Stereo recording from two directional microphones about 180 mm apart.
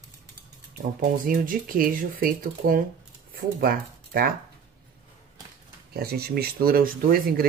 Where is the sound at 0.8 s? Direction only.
50° right (ahead or behind).